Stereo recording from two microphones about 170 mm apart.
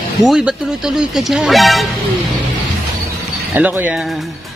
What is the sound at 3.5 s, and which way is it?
Speech, 10° right (ahead or behind).